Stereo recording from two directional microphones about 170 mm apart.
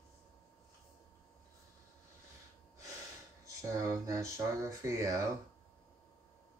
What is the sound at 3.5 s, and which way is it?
Speech, 15° right (ahead or behind).